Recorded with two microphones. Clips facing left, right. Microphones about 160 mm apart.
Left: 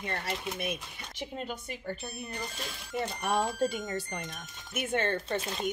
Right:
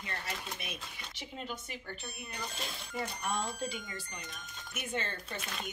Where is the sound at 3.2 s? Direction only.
60° left (ahead or behind).